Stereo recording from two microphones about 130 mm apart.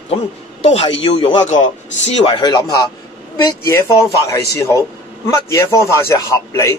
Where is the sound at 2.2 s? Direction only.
35° left (ahead or behind).